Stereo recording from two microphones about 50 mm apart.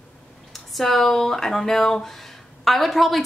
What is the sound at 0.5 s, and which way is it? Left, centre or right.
Speech, centre.